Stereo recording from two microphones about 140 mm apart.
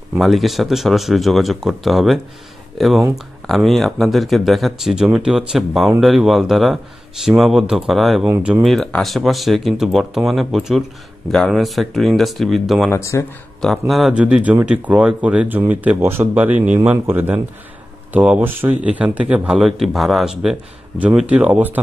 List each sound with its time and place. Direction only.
0.2 s speech: centre (ahead or behind)
12.9 s speech: 20° left (ahead or behind)
13.6 s speech: centre (ahead or behind)